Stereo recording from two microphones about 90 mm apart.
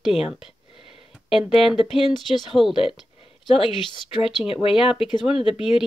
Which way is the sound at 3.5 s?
75° left (ahead or behind).